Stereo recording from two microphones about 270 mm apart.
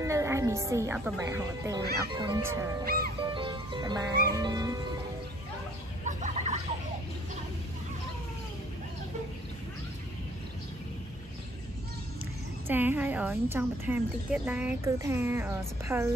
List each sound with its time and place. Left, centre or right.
0.0 s a woman's voice: centre
2.8 s speech: right
3.3 s music: centre
4.1 s speech: right
4.4 s music: centre
6.0 s a sound: right
12.6 s a woman's voice: centre